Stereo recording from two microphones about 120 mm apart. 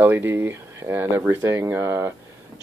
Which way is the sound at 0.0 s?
20° right (ahead or behind).